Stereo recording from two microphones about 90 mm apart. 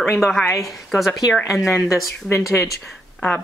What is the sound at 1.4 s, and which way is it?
Speech, 35° left (ahead or behind).